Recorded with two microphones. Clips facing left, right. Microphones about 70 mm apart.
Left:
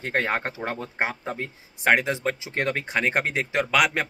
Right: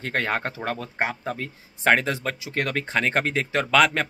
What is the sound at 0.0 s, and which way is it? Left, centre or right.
Speech, left.